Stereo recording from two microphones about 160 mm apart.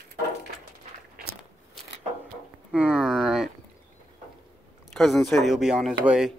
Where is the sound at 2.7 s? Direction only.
5° right (ahead or behind).